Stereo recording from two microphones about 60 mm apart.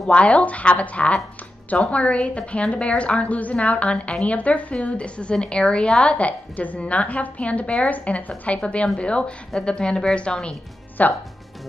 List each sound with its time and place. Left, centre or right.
0.0 s a woman's voice: left